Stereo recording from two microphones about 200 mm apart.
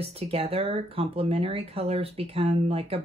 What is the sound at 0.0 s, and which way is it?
Speech, 30° right (ahead or behind).